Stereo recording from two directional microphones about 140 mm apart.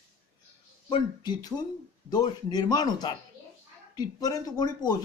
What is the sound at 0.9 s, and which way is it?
Speech, 30° left (ahead or behind).